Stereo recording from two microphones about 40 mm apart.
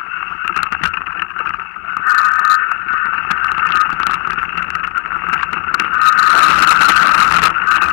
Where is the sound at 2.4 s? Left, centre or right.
Left.